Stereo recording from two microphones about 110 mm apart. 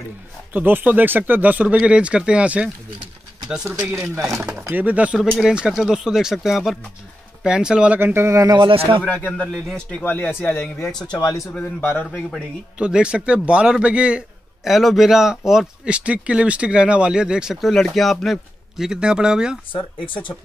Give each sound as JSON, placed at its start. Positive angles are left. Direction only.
{"t": 0.5, "sound": "speech", "side_deg": -15}
{"t": 3.9, "sound": "speech", "side_deg": -20}
{"t": 8.0, "sound": "speech", "side_deg": -20}
{"t": 8.5, "sound": "speech", "side_deg": -50}
{"t": 9.0, "sound": "speech", "side_deg": 15}
{"t": 11.1, "sound": "speech", "side_deg": 30}
{"t": 11.5, "sound": "speech", "side_deg": 15}
{"t": 12.3, "sound": "speech", "side_deg": -10}